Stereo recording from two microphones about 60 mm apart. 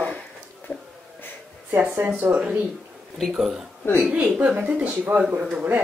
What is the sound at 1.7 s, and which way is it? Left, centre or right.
Speech, right.